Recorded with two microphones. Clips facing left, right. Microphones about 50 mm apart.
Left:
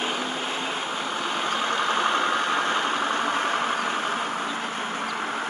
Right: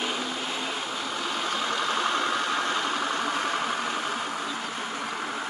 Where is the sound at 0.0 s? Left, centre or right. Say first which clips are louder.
Left 2 dB; left.